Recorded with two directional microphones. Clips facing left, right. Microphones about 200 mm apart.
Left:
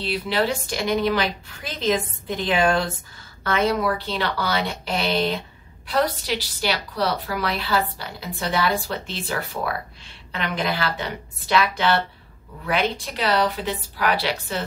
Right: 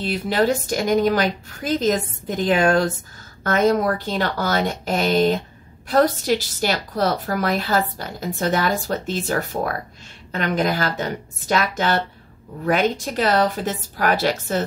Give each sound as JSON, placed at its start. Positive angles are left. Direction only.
{"t": 0.0, "sound": "a woman's voice", "side_deg": -45}